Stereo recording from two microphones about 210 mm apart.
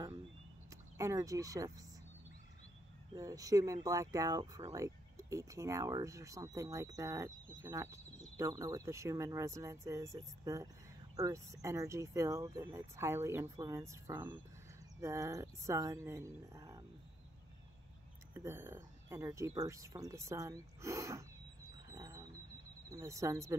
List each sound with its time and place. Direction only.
0.9 s speech: 15° right (ahead or behind)
3.2 s speech: 15° right (ahead or behind)
18.3 s speech: 10° right (ahead or behind)
21.8 s a sound: 15° right (ahead or behind)
22.8 s speech: 15° right (ahead or behind)